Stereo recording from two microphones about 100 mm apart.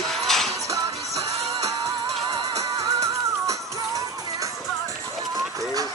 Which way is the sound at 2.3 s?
35° right (ahead or behind).